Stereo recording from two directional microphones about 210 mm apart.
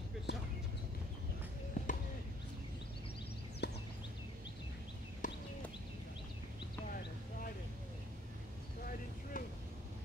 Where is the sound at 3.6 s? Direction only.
55° left (ahead or behind).